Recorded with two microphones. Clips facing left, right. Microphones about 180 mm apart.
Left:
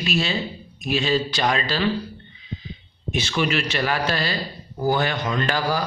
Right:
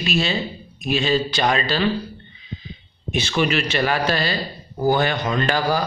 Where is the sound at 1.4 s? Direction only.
60° right (ahead or behind).